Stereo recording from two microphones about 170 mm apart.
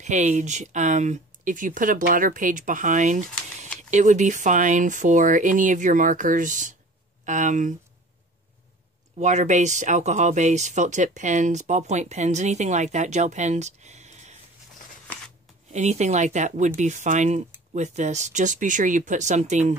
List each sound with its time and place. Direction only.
0.0 s speech: 45° right (ahead or behind)
9.2 s speech: 45° right (ahead or behind)
15.7 s speech: 40° right (ahead or behind)